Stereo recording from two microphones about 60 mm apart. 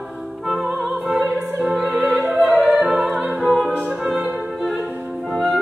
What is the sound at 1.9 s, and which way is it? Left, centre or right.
Opera, right.